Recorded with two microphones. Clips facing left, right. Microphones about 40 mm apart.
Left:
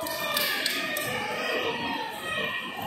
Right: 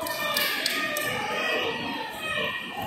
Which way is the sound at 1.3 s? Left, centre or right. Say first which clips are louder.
Right 3 dB; right.